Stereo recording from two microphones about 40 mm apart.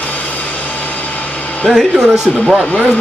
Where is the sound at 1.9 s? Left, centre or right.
Centre.